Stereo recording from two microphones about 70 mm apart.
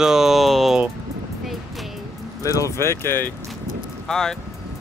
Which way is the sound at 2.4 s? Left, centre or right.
Left.